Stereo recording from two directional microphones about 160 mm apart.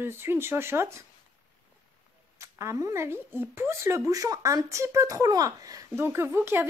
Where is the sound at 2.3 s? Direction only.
20° right (ahead or behind).